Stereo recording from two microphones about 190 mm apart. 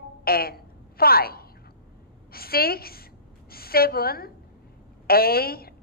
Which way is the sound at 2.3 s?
55° left (ahead or behind).